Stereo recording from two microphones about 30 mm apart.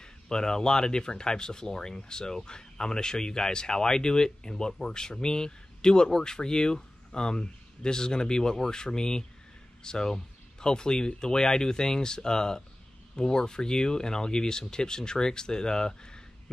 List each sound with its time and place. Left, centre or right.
0.0 s speech: left